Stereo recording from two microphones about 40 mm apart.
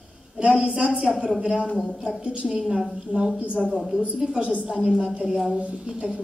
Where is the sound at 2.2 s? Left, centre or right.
Right.